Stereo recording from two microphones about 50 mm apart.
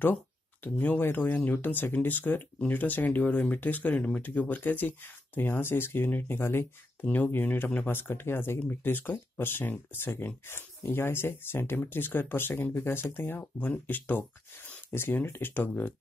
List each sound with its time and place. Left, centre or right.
0.7 s speech: left
12.7 s speech: left
14.9 s speech: left